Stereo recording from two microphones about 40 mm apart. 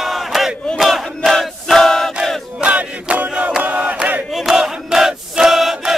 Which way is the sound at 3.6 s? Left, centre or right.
Right.